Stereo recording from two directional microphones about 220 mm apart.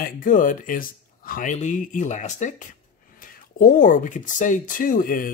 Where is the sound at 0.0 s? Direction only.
35° left (ahead or behind).